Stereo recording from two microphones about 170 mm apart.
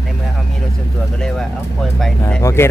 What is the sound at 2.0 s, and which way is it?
Speech, 5° left (ahead or behind).